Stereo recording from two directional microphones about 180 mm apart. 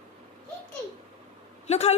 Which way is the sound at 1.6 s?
35° left (ahead or behind).